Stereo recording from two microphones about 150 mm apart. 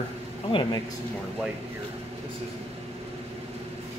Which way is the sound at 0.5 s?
35° left (ahead or behind).